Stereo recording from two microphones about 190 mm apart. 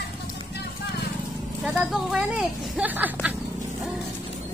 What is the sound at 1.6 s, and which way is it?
Vehicle, 5° right (ahead or behind).